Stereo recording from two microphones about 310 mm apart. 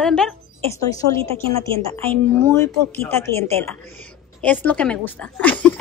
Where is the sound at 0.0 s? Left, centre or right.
Centre.